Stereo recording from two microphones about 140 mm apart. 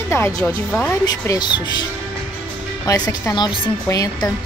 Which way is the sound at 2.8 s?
25° left (ahead or behind).